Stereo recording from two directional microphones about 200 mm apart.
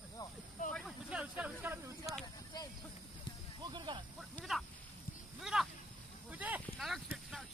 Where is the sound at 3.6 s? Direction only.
25° right (ahead or behind).